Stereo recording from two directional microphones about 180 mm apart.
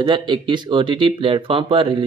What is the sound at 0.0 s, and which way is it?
Speech, 25° right (ahead or behind).